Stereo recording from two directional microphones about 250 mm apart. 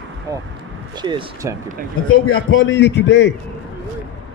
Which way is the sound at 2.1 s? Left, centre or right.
Left.